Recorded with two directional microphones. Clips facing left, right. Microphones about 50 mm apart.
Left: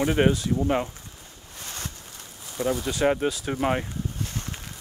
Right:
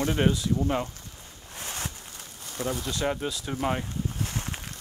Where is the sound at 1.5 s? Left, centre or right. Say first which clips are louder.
Right 2 dB; centre.